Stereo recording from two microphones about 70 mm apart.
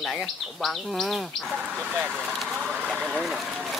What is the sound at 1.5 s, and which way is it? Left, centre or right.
Speech, right.